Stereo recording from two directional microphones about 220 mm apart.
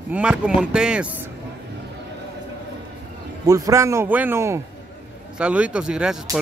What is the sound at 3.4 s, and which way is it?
A man's voice, 15° right (ahead or behind).